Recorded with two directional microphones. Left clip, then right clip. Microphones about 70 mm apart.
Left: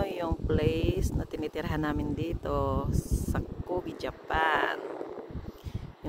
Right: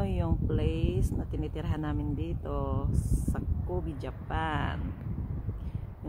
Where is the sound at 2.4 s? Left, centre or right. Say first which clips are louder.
Left 6 dB; left.